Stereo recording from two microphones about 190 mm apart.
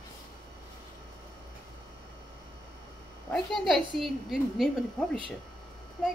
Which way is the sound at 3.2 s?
Centre (ahead or behind).